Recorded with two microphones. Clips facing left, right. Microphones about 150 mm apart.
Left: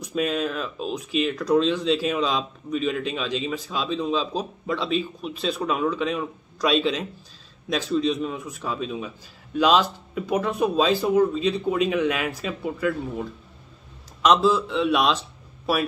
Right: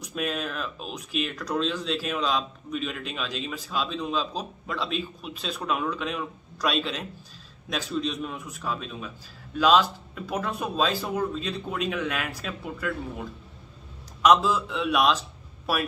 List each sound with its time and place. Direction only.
0.1 s speech: centre (ahead or behind)
14.2 s a man's voice: 10° right (ahead or behind)